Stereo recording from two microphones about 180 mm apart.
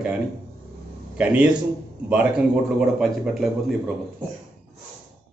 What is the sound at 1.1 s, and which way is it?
Speech, 5° right (ahead or behind).